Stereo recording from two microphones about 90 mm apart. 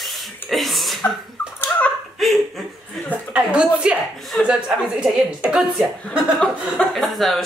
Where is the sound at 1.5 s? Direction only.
25° left (ahead or behind).